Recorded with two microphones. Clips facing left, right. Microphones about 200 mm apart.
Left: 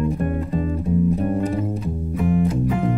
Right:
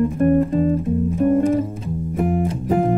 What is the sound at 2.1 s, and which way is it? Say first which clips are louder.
Music: even; 50° right (ahead or behind).